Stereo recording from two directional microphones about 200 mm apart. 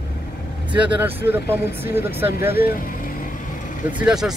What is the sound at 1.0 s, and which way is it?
Speech, 10° right (ahead or behind).